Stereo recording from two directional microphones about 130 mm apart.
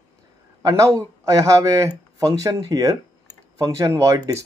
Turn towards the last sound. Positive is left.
turn(degrees=-25)  # may be behind; listen again after turning